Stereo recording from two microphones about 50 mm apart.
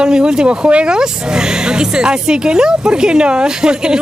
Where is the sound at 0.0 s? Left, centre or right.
Centre.